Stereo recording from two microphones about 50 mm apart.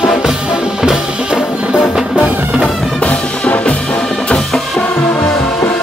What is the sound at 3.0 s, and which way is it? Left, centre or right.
Music, left.